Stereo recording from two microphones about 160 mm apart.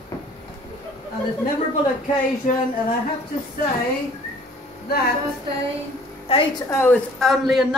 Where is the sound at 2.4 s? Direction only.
55° left (ahead or behind).